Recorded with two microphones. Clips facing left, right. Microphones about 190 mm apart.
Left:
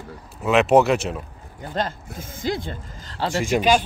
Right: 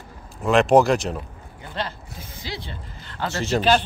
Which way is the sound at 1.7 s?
45° left (ahead or behind).